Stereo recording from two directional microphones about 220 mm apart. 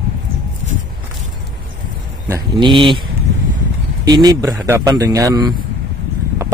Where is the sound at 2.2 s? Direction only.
15° right (ahead or behind).